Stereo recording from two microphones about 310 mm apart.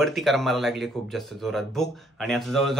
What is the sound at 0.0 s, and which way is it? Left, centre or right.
Speech, centre.